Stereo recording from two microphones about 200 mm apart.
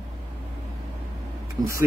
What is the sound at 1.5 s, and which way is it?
Speech, 15° right (ahead or behind).